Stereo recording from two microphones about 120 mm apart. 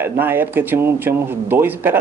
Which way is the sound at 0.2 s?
15° right (ahead or behind).